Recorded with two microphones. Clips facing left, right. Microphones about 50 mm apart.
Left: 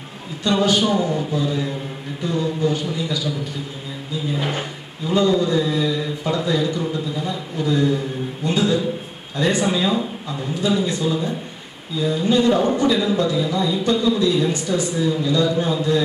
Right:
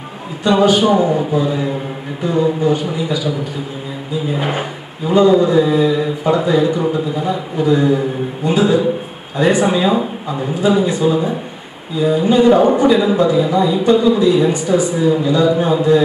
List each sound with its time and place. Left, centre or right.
0.4 s speech: centre